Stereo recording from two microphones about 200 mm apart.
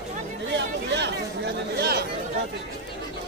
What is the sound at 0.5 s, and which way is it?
Speech, 60° right (ahead or behind).